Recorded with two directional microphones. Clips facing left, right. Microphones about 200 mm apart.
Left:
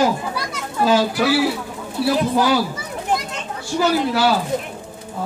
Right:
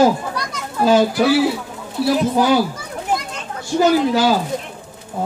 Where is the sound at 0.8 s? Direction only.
25° right (ahead or behind).